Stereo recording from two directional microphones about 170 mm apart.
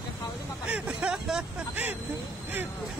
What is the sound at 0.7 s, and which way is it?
A man's voice, 5° right (ahead or behind).